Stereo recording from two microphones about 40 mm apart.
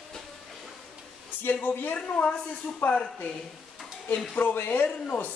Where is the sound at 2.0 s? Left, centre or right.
Left.